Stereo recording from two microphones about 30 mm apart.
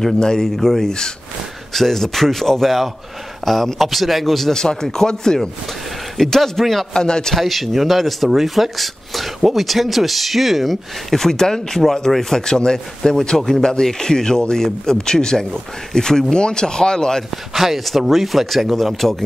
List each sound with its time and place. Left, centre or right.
0.2 s speech: left
0.6 s speech: centre
4.5 s speech: centre
6.9 s speech: left
7.3 s speech: centre
8.7 s speech: centre
11.1 s speech: centre
12.4 s speech: left
12.7 s speech: centre
13.6 s speech: left
17.3 s speech: centre